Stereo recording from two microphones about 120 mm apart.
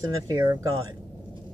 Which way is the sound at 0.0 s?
30° right (ahead or behind).